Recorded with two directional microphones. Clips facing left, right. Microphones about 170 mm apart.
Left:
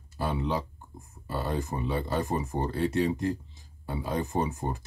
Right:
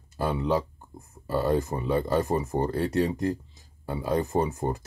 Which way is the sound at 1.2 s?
40° right (ahead or behind).